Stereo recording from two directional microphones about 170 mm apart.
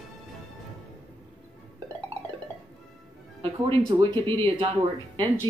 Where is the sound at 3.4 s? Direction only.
30° right (ahead or behind).